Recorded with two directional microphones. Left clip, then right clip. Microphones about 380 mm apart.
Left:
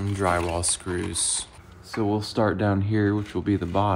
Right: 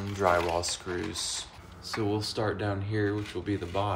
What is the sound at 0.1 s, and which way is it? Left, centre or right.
Speech, left.